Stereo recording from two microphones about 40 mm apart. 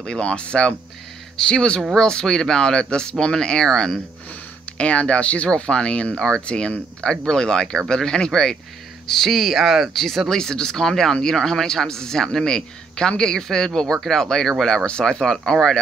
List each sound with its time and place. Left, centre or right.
0.0 s speech: centre
4.7 s speech: left